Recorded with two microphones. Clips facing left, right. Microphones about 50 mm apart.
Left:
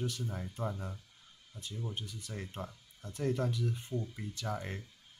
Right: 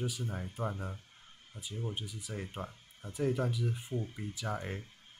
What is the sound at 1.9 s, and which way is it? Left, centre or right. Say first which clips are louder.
Speech: right 2 dB; centre.